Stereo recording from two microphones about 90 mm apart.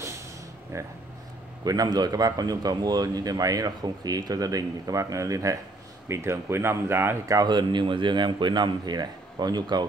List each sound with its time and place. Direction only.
0.7 s speech: 30° right (ahead or behind)
1.6 s a man's voice: 45° right (ahead or behind); by 7.3 s 25° right (ahead or behind)
7.3 s speech: 55° right (ahead or behind)